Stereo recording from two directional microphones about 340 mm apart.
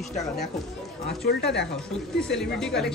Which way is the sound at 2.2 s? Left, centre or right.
Centre.